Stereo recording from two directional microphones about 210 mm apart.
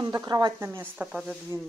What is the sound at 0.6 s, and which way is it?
Speech, 5° right (ahead or behind).